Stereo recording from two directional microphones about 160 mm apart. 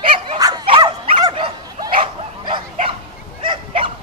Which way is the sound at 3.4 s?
35° right (ahead or behind).